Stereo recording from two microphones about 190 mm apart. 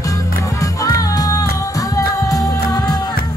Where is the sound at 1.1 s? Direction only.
20° left (ahead or behind).